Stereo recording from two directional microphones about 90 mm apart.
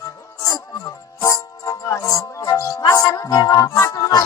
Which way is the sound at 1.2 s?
40° left (ahead or behind).